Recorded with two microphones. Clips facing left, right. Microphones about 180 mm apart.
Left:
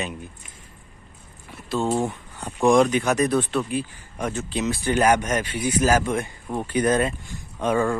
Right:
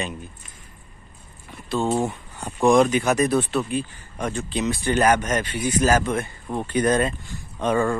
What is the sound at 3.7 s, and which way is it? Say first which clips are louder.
Speech: right 1 dB; 5° left (ahead or behind).